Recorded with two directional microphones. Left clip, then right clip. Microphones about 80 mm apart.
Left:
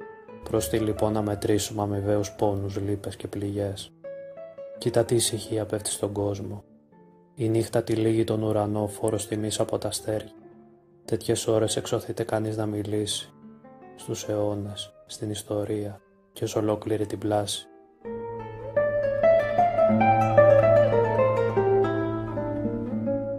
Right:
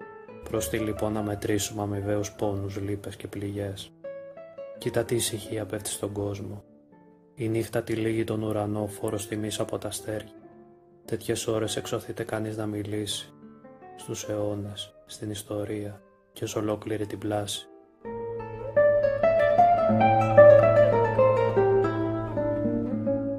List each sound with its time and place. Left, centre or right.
0.4 s speech: centre
1.9 s speech: centre
2.1 s speech: centre
2.9 s speech: left
7.4 s speech: centre
18.0 s music: centre